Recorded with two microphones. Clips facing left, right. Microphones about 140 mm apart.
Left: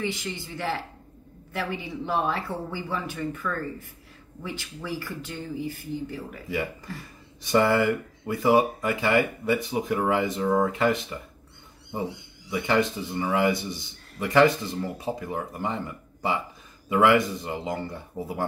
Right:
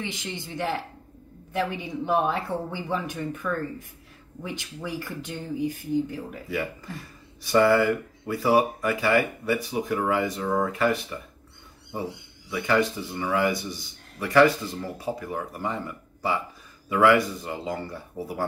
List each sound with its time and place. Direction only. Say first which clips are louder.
0.0 s speech: left 3 dB; 20° right (ahead or behind)
7.4 s speech: right 2 dB; 20° left (ahead or behind)
12.4 s speech: even; 20° left (ahead or behind)